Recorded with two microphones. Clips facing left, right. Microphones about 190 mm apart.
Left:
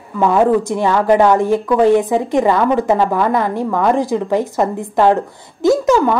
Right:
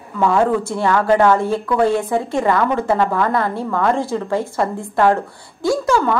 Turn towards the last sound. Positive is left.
turn(degrees=20)  # may be behind; listen again after turning